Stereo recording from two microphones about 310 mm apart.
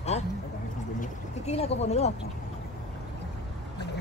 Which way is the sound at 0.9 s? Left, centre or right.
Centre.